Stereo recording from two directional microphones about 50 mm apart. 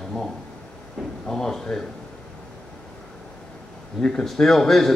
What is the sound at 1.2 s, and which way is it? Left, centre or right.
Speech, centre.